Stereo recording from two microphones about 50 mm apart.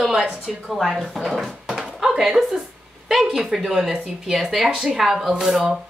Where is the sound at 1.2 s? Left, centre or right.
Centre.